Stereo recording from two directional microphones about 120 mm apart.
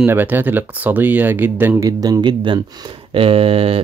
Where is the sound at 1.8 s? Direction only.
30° right (ahead or behind).